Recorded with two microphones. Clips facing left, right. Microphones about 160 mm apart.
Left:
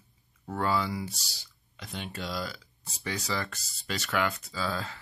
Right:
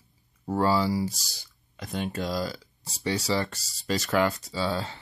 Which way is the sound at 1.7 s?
45° right (ahead or behind).